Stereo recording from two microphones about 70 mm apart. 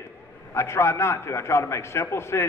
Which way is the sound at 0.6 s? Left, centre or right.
Left.